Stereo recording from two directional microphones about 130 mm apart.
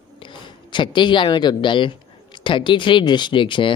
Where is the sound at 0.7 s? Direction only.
35° left (ahead or behind).